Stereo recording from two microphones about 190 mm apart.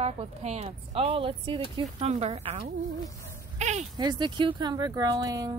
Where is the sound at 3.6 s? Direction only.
40° right (ahead or behind).